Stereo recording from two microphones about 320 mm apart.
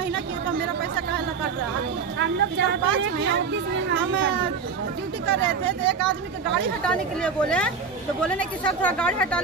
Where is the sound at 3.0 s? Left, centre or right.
Right.